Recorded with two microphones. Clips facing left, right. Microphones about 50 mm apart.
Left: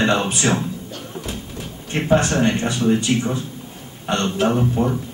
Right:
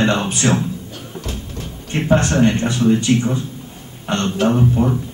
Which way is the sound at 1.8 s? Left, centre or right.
Centre.